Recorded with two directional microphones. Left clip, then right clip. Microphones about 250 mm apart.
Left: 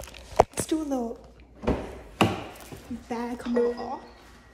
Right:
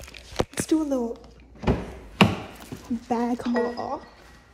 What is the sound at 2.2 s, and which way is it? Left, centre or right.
Chop, right.